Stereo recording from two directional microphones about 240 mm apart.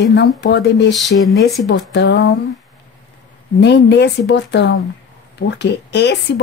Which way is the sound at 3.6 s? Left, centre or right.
Left.